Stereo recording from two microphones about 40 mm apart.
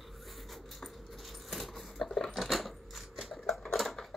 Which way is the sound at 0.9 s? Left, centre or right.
Centre.